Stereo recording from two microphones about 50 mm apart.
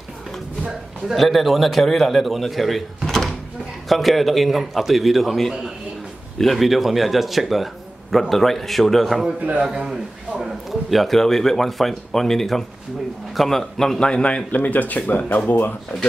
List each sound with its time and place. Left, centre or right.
1.1 s speech: centre
9.4 s a man's voice: right
9.7 s a man's voice: centre; by 14.4 s left
14.5 s speech: left